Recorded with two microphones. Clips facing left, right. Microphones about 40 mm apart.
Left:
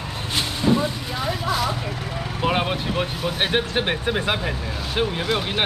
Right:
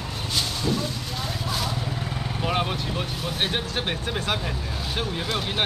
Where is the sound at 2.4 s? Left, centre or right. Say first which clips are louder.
Left 4 dB; left.